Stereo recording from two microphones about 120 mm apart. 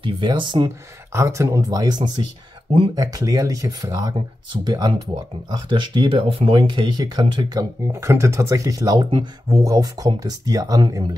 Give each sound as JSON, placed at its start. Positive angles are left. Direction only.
{"t": 0.0, "sound": "speech", "side_deg": -40}
{"t": 1.1, "sound": "speech", "side_deg": -25}
{"t": 7.9, "sound": "speech", "side_deg": -25}